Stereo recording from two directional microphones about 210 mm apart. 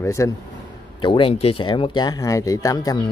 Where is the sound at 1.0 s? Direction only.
25° left (ahead or behind).